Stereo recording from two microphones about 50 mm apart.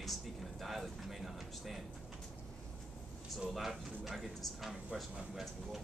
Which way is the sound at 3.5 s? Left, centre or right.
Centre.